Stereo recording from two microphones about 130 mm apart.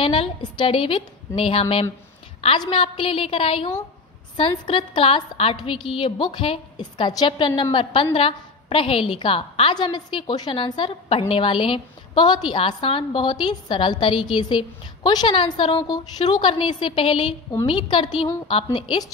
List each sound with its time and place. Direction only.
0.0 s a woman's voice: 40° left (ahead or behind)